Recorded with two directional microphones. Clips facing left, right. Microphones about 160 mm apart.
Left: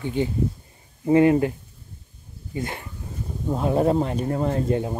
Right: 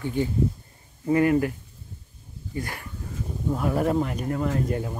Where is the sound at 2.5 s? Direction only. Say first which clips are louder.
Left 3 dB; 25° left (ahead or behind).